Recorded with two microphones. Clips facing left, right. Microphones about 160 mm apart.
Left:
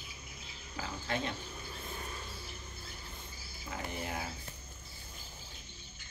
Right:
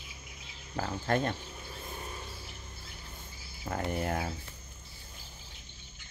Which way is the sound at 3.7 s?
50° right (ahead or behind).